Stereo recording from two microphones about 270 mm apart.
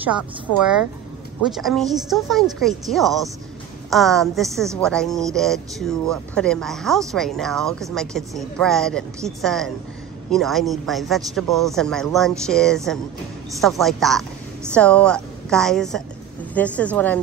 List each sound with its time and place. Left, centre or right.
1.4 s a woman's voice: centre